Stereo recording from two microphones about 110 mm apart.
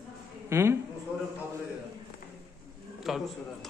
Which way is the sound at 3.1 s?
Centre (ahead or behind).